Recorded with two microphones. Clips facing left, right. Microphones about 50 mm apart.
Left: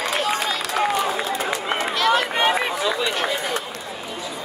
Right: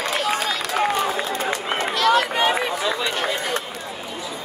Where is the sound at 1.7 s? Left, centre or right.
Centre.